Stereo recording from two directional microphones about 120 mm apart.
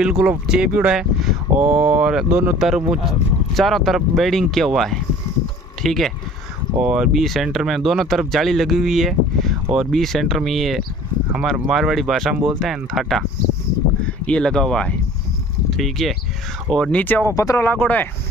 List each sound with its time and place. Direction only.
0.0 s speech: 5° right (ahead or behind)
17.0 s speech: 15° left (ahead or behind)
17.3 s speech: 30° left (ahead or behind)